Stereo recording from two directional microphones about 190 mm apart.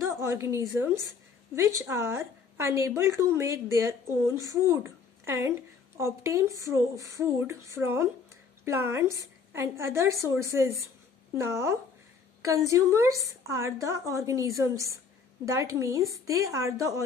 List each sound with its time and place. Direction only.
0.0 s a woman's voice: 15° right (ahead or behind)